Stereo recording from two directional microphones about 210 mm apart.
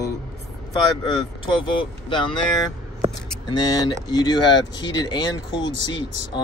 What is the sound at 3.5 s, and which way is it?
Speech, 20° left (ahead or behind).